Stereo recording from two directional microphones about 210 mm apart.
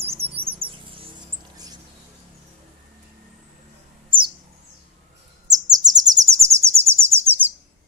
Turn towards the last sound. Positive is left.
turn(degrees=-10)  # may be behind; listen again after turning